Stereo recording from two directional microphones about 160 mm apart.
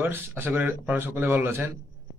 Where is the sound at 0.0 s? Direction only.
15° right (ahead or behind).